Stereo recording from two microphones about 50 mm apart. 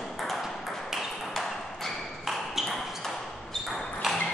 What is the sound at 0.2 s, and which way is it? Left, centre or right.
Ping, centre.